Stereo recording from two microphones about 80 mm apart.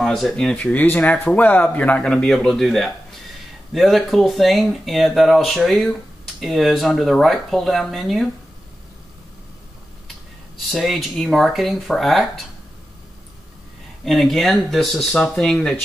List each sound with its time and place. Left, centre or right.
0.0 s speech: centre
0.6 s speech: centre
2.2 s speech: centre
10.7 s speech: centre
14.0 s speech: centre